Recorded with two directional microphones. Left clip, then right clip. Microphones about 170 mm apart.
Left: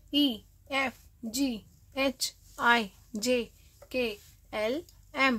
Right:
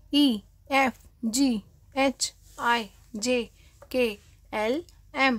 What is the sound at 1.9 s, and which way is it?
Speech, 10° right (ahead or behind).